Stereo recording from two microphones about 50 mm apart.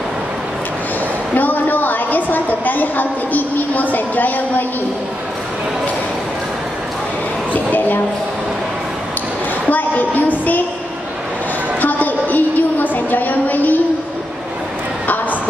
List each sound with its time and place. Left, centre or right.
1.3 s a woman's voice: left
7.5 s a woman's voice: left
9.7 s a woman's voice: left
11.8 s a sound: left